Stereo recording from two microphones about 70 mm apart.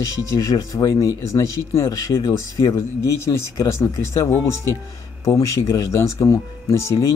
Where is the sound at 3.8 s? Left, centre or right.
Left.